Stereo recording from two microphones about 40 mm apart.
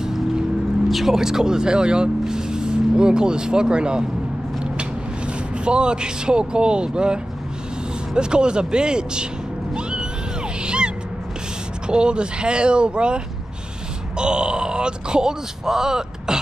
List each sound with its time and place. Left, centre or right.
0.0 s music: centre
0.8 s speech: centre
1.1 s speech: centre
5.7 s speech: right
9.8 s music: right
10.6 s gasp: right
11.9 s speech: right